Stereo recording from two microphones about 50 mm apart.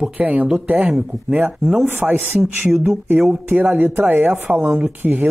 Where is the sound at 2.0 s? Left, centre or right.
Right.